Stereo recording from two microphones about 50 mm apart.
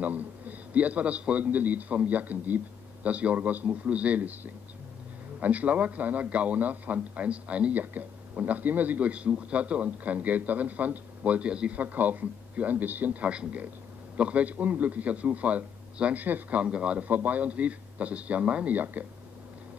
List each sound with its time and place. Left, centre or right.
0.0 s a man's voice: right
17.1 s a man's voice: right